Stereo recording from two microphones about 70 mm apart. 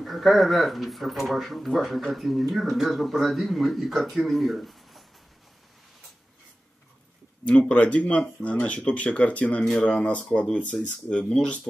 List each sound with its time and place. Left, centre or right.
0.0 s speech: centre
7.4 s speech: centre